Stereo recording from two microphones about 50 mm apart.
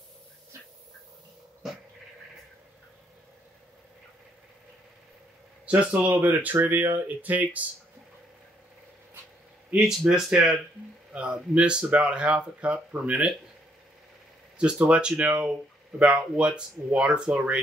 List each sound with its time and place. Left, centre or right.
5.7 s speech: right
9.8 s speech: centre
11.1 s speech: right
14.6 s speech: right